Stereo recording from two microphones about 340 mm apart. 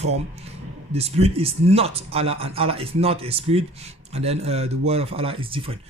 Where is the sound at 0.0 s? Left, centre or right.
Centre.